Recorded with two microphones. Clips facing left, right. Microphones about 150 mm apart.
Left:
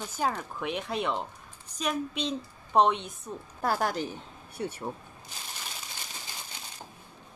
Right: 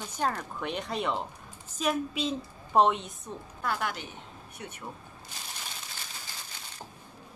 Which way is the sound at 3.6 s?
35° left (ahead or behind).